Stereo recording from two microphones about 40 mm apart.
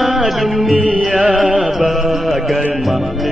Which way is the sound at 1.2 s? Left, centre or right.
Centre.